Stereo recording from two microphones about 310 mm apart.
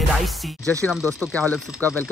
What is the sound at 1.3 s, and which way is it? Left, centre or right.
Music, centre.